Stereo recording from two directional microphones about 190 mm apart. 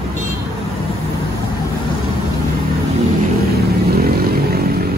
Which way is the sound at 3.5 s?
55° right (ahead or behind).